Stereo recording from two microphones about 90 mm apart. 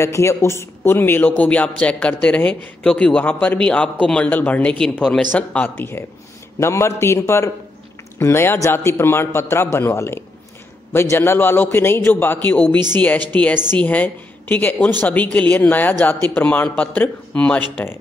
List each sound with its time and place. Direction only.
0.0 s a woman's voice: 35° left (ahead or behind); by 5.9 s 15° left (ahead or behind)
6.6 s a man's voice: 30° left (ahead or behind); by 17.6 s 15° left (ahead or behind)